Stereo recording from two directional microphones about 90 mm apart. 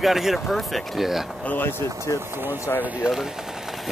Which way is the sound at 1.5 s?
25° left (ahead or behind).